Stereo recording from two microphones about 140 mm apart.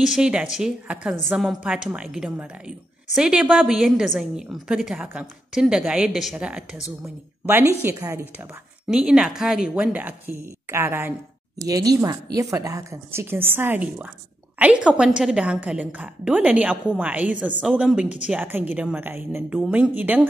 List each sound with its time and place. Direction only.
0.0 s a woman's voice: 5° right (ahead or behind)
8.8 s a woman's voice: 5° right (ahead or behind)
11.6 s a woman's voice: 25° right (ahead or behind)